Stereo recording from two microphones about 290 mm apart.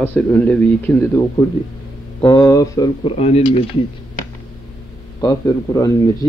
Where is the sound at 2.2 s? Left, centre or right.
Centre.